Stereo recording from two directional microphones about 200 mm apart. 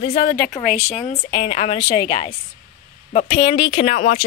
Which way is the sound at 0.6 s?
5° right (ahead or behind).